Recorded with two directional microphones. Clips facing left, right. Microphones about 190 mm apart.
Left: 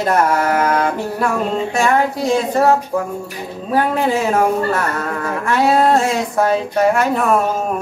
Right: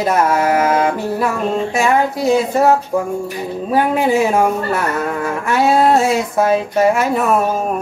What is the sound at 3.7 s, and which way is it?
Speech, 15° right (ahead or behind).